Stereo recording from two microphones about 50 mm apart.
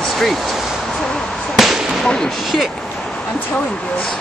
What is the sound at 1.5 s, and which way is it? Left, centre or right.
Whip, centre.